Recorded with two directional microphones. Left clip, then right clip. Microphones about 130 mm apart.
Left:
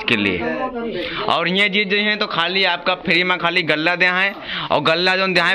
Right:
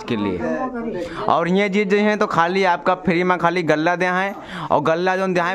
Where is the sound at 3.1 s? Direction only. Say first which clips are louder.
Left 3 dB; 50° right (ahead or behind).